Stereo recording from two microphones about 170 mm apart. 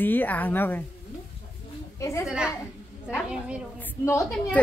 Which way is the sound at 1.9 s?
15° left (ahead or behind).